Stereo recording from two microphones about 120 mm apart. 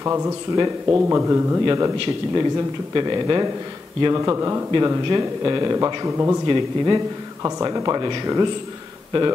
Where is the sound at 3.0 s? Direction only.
40° right (ahead or behind); by 6.4 s 20° right (ahead or behind).